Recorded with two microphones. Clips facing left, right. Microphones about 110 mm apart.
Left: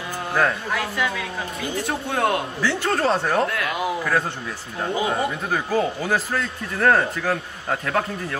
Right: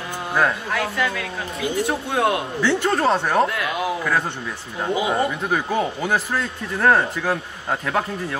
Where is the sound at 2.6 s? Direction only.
25° right (ahead or behind).